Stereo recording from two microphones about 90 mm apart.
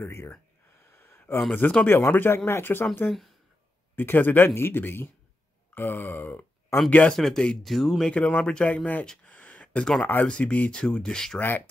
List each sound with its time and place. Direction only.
0.0 s speech: 30° left (ahead or behind)
0.9 s a sound: 25° left (ahead or behind)
1.5 s speech: 15° left (ahead or behind)
3.1 s speech: centre (ahead or behind)
3.9 s speech: 20° left (ahead or behind); by 8.1 s centre (ahead or behind)
8.1 s speech: 15° left (ahead or behind)
9.0 s a sound: 10° left (ahead or behind)
10.2 s speech: 10° left (ahead or behind)